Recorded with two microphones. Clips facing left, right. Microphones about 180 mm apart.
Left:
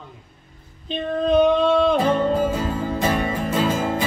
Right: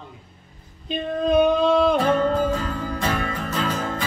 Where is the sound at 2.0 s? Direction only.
25° left (ahead or behind).